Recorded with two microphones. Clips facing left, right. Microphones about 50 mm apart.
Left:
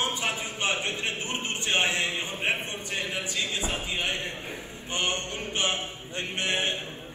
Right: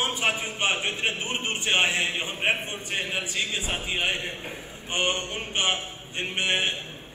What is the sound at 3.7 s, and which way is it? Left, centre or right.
A man's voice, right.